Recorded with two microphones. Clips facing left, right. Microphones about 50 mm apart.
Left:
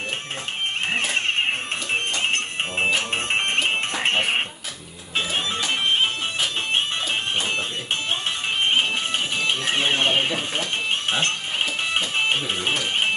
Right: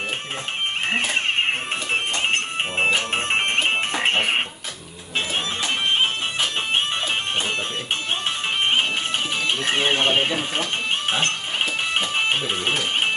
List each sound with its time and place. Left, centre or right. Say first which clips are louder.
2.8 s music: right 2 dB; centre
9.7 s speech: right 2 dB; centre
12.0 s music: even; centre